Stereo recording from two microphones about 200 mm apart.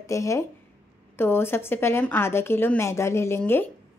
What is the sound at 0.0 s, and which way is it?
A woman's voice, 15° left (ahead or behind).